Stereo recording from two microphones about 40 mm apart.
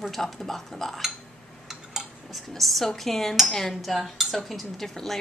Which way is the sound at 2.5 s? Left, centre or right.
Centre.